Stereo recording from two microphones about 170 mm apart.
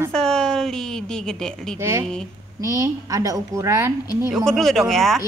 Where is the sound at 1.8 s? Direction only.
15° right (ahead or behind).